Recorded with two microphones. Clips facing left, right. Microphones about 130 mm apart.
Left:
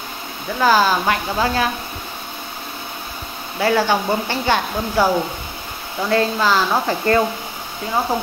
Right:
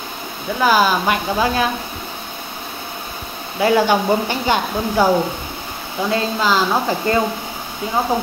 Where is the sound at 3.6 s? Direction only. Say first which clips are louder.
Right 2 dB; 15° right (ahead or behind).